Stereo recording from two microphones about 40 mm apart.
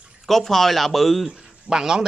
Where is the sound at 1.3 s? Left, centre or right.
Centre.